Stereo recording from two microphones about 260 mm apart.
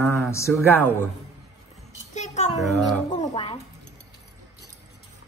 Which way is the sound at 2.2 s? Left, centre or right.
Left.